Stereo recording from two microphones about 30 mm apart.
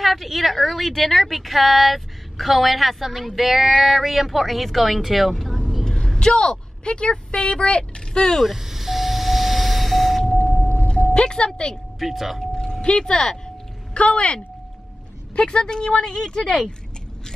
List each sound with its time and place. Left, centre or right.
0.0 s a woman's voice: centre
5.5 s vehicle: centre
5.9 s a sound: centre
6.1 s speech: left
8.4 s vehicle: centre
10.9 s speech: left
12.0 s a woman's voice: centre
12.9 s a woman's voice: left